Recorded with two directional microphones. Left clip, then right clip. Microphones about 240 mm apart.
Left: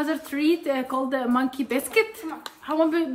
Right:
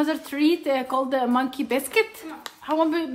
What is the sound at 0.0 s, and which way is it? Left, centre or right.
A woman's voice, right.